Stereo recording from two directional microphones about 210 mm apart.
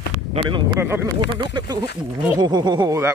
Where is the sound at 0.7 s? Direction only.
10° right (ahead or behind).